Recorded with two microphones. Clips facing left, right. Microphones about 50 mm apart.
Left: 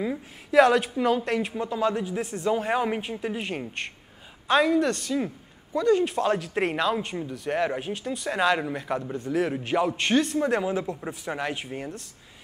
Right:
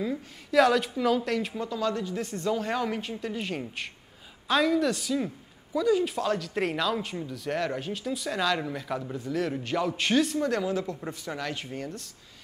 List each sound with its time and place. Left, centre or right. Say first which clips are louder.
0.0 s a woman's voice: left 2 dB; centre
1.7 s speech: left 4 dB; left; by 6.2 s centre
6.2 s speech: left 3 dB; centre
7.0 s speech: left 3 dB; centre
10.4 s speech: left 2 dB; left